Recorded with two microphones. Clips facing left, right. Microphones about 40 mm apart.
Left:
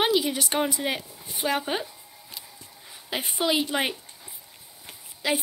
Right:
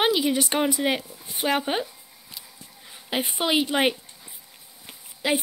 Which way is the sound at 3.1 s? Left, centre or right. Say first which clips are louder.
Right 2 dB; right.